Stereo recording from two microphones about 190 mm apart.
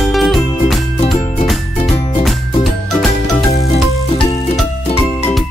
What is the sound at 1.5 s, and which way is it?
Music, centre (ahead or behind).